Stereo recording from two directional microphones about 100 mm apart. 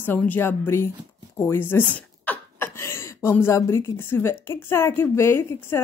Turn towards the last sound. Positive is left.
turn(degrees=25)  # may be behind; listen again after turning